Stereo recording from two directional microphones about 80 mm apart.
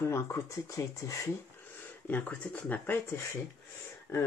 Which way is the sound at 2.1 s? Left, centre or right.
Left.